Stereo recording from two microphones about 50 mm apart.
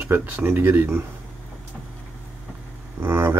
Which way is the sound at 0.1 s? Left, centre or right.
Right.